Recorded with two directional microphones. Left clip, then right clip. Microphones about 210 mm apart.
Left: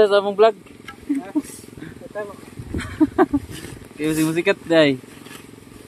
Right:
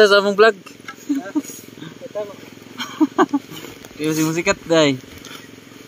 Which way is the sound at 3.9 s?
40° right (ahead or behind).